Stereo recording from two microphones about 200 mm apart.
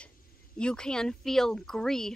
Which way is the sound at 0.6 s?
5° left (ahead or behind).